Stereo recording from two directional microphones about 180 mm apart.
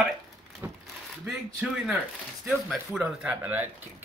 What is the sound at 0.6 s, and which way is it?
Crumpling, 10° right (ahead or behind).